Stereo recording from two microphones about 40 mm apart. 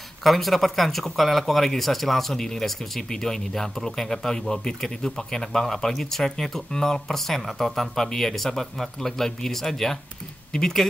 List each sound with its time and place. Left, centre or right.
0.2 s speech: centre